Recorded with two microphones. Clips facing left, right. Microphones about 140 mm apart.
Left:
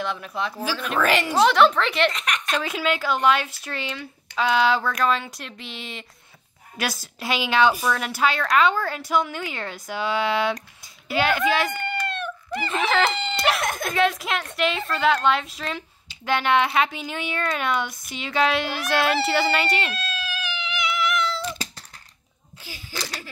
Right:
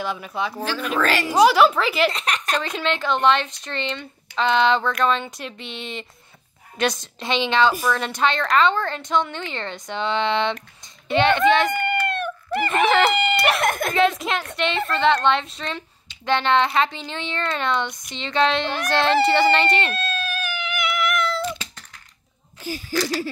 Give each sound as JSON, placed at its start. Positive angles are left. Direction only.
{"t": 0.0, "sound": "a woman's voice", "side_deg": -5}
{"t": 2.0, "sound": "a woman's voice", "side_deg": -35}
{"t": 2.5, "sound": "a woman's voice", "side_deg": 5}
{"t": 11.7, "sound": "chicken", "side_deg": -55}
{"t": 12.8, "sound": "speech", "side_deg": 0}
{"t": 13.6, "sound": "speech", "side_deg": -55}
{"t": 13.9, "sound": "a woman's voice", "side_deg": 0}
{"t": 19.9, "sound": "cat", "side_deg": -55}
{"t": 22.6, "sound": "speech", "side_deg": -45}